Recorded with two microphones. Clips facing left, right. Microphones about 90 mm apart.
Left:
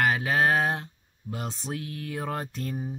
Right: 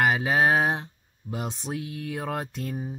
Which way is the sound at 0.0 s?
20° right (ahead or behind).